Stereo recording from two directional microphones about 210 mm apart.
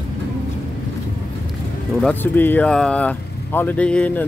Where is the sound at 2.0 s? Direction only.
10° left (ahead or behind).